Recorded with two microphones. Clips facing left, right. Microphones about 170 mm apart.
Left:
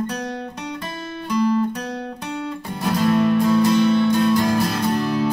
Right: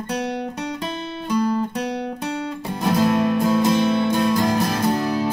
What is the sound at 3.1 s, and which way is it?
Music, 20° right (ahead or behind).